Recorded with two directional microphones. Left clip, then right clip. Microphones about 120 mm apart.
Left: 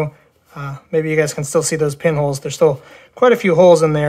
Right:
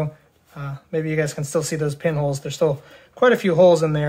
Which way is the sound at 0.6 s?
35° left (ahead or behind).